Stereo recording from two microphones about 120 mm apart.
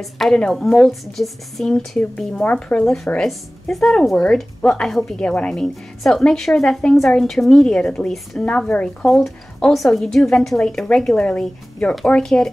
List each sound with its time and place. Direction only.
0.0 s a woman's voice: 5° left (ahead or behind)